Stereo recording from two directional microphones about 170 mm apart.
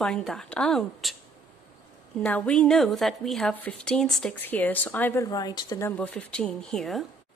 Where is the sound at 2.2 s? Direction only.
5° left (ahead or behind).